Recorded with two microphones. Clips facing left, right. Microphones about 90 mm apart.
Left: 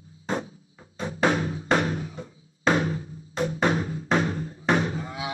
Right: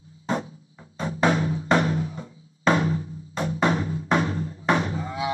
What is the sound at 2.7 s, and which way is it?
Music, 35° left (ahead or behind).